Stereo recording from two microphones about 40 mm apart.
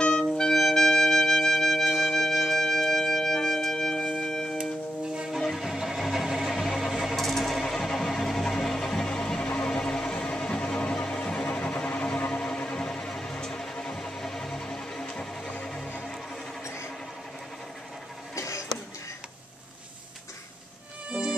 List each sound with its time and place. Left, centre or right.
0.0 s music: centre
0.4 s music: centre
5.0 s music: centre
5.6 s music: centre
5.9 s a sound: centre
6.8 s music: centre; by 11.4 s left
11.4 s a sound: left
12.3 s a sound: left
13.1 s music: centre
21.1 s music: right